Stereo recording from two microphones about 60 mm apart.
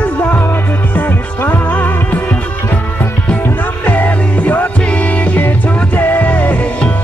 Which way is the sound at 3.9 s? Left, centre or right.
Left.